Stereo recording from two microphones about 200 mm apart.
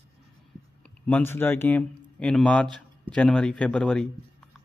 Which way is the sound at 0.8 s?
5° left (ahead or behind).